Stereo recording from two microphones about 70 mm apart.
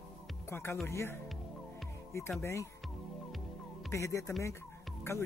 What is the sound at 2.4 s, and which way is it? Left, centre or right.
Speech, left.